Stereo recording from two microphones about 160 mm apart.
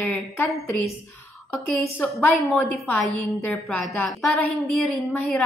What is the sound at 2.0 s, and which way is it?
Speech, centre (ahead or behind).